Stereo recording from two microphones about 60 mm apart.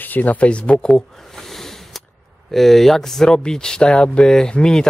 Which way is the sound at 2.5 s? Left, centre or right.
Centre.